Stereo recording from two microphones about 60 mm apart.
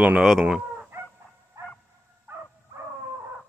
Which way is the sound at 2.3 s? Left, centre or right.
Right.